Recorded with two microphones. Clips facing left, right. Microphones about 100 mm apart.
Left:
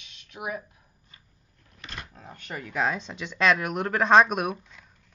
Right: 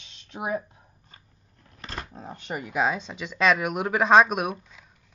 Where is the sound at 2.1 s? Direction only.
25° right (ahead or behind).